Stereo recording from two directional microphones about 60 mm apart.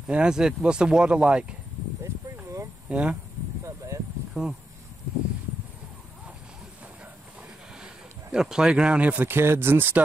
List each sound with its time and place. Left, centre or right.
0.0 s speech: centre
2.9 s speech: right
3.6 s a sound: right
4.3 s speech: centre
7.8 s a sound: centre
9.0 s a man's voice: right
9.3 s speech: right